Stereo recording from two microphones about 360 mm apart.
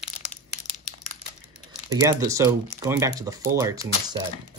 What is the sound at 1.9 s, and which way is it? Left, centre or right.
Speech, centre.